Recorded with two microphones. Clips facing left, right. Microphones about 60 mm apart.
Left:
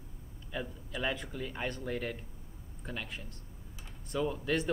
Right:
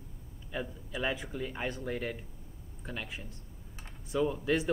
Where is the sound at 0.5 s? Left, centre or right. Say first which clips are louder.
Right 1 dB; centre.